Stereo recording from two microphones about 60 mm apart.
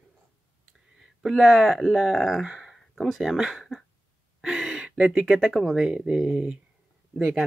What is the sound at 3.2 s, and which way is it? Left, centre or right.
Speech, centre.